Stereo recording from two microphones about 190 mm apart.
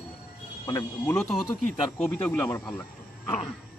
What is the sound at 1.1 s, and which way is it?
Speech, 5° left (ahead or behind).